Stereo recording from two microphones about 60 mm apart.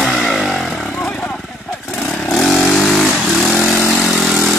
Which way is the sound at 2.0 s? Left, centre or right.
Centre.